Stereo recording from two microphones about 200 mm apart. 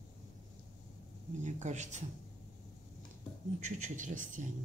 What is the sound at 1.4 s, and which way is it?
Speech, 35° right (ahead or behind).